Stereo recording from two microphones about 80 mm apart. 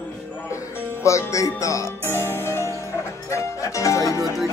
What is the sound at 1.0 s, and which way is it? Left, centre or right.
Music, left.